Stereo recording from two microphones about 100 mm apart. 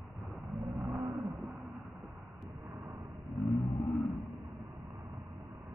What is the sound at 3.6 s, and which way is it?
Vehicle, 75° left (ahead or behind).